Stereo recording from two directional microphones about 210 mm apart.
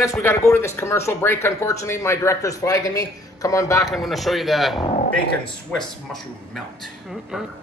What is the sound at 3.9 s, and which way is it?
Speech, centre (ahead or behind).